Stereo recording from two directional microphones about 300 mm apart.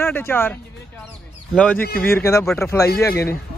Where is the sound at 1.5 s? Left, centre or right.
Centre.